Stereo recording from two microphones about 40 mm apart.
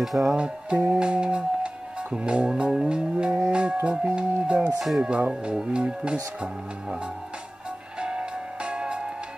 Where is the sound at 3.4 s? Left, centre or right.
Right.